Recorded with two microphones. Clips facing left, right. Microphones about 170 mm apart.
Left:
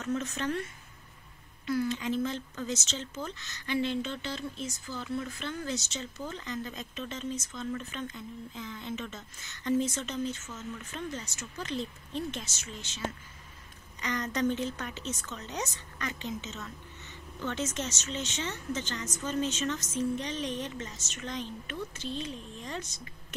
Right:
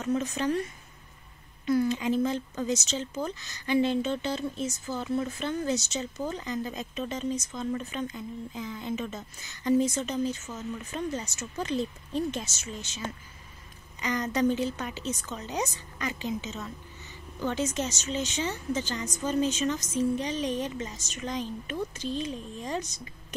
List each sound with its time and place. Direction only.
0.0 s speech: 15° right (ahead or behind)
1.7 s speech: 20° right (ahead or behind)
11.0 s a woman's voice: 40° right (ahead or behind)
14.0 s speech: 10° right (ahead or behind)